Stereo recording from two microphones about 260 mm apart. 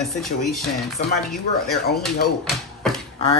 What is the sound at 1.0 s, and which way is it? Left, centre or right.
Speech, left.